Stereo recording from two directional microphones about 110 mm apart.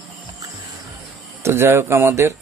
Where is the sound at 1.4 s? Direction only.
25° right (ahead or behind).